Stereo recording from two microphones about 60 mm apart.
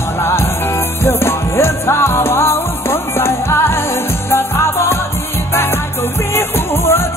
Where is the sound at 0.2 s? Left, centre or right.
Left.